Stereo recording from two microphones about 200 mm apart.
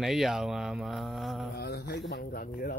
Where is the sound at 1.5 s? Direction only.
55° left (ahead or behind).